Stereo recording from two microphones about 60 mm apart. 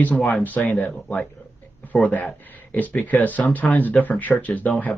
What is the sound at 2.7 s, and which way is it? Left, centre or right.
Speech, left.